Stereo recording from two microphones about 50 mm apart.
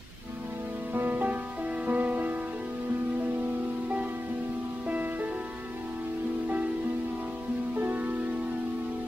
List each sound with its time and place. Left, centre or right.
0.9 s music: right
4.8 s music: right
7.7 s music: right